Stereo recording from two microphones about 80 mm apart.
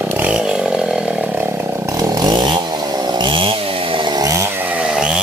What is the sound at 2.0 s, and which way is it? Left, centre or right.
Chainsaw, right.